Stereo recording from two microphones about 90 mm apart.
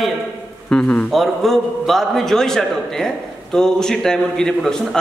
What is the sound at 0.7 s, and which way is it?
Speech, 15° left (ahead or behind).